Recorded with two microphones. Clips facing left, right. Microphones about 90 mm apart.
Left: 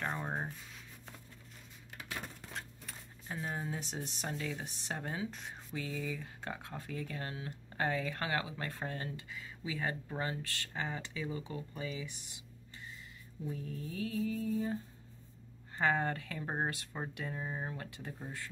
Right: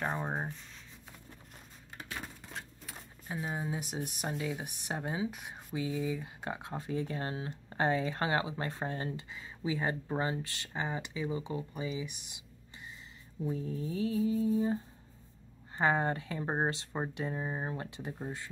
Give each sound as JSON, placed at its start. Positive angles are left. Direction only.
{"t": 0.0, "sound": "writing", "side_deg": -15}
{"t": 2.5, "sound": "speech", "side_deg": -5}
{"t": 13.4, "sound": "speech", "side_deg": -30}
{"t": 15.8, "sound": "speech", "side_deg": -20}